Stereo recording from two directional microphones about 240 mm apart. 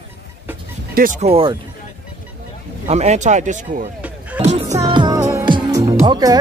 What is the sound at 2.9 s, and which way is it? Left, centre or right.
Speech, right.